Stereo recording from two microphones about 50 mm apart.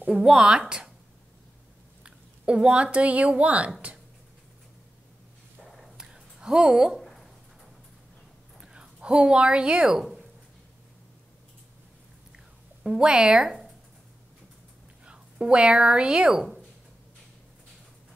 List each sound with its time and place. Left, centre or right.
0.1 s speech: centre
2.0 s speech: right
5.6 s a sound: centre
7.0 s a sound: centre
8.5 s speech: centre
12.8 s speech: centre
15.0 s a woman's voice: centre